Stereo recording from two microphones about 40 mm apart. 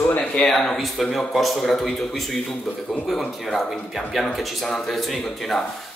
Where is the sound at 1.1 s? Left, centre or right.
Centre.